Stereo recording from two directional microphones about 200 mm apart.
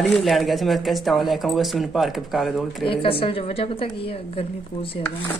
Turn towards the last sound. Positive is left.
turn(degrees=25)  # may be behind; listen again after turning